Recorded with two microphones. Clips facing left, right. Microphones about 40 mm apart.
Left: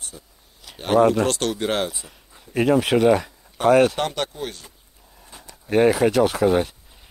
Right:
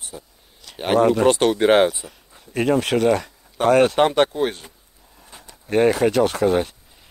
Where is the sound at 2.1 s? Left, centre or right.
Centre.